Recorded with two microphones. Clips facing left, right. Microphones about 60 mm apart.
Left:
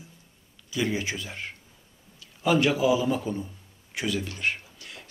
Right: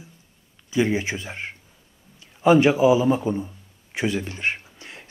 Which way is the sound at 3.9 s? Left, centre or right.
Right.